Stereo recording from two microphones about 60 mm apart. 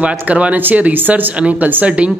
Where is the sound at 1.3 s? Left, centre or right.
Centre.